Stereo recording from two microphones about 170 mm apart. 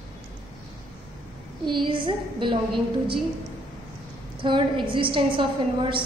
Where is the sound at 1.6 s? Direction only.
30° right (ahead or behind).